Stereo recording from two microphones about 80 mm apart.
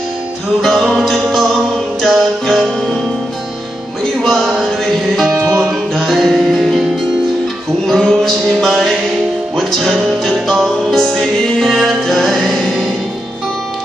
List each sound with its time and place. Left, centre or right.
0.6 s music: centre
4.2 s a sound: centre
5.3 s music: right
5.9 s music: centre
7.8 s mantra: centre
10.2 s music: centre